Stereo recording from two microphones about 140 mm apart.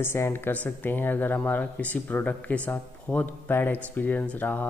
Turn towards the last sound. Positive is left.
turn(degrees=15)  # may be behind; listen again after turning